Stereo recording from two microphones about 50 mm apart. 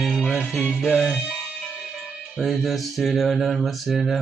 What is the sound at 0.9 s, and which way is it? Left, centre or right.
Music, centre.